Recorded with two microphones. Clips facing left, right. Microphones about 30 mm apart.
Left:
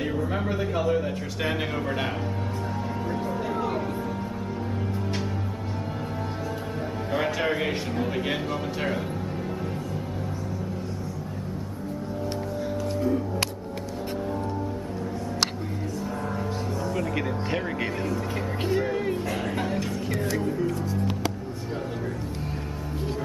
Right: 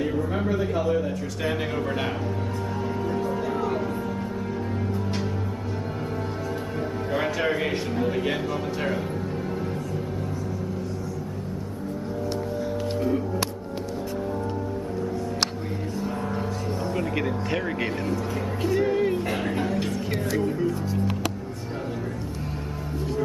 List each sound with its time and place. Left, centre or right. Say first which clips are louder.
0.1 s speech: right 1 dB; centre
0.5 s speech: right 1 dB; centre
1.8 s speech: right 1 dB; centre
3.1 s music: right 2 dB; centre
7.1 s music: even; centre
16.9 s speech: right 2 dB; centre
18.1 s speech: right 1 dB; left
18.8 s music: right 4 dB; centre